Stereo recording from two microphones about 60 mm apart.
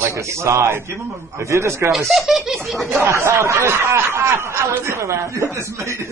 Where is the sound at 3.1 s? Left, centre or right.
Right.